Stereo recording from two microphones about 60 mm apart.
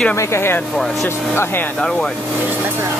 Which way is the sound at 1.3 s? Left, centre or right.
Left.